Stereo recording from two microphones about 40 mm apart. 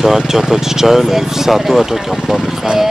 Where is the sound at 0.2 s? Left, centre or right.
Centre.